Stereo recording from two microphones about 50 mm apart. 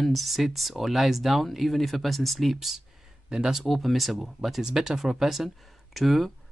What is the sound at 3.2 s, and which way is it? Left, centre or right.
Speech, centre.